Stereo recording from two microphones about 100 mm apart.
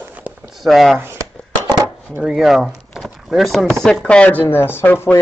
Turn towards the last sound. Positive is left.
turn(degrees=20)  # may be behind; listen again after turning